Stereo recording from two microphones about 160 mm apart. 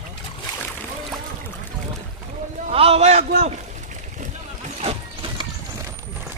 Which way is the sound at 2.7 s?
40° right (ahead or behind).